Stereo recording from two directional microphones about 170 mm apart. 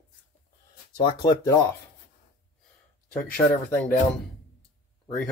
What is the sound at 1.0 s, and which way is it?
Speech, 25° left (ahead or behind).